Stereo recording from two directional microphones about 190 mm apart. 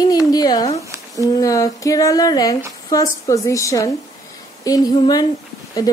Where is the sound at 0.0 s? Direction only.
20° left (ahead or behind).